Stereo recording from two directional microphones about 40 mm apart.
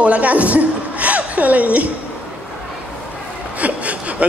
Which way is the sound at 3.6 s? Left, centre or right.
Right.